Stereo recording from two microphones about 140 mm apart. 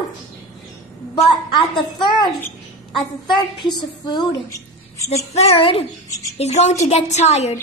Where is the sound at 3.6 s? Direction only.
30° left (ahead or behind).